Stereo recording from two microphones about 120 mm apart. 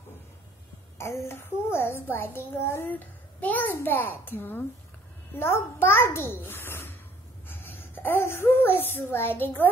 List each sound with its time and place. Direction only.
0.9 s a woman's voice: 20° left (ahead or behind)